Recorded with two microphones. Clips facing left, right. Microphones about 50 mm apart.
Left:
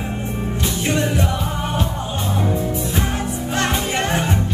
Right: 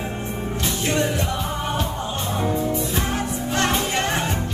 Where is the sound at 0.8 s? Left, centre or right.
Left.